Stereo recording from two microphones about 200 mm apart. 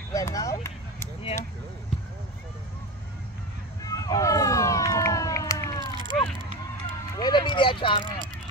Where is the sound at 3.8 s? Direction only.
15° left (ahead or behind).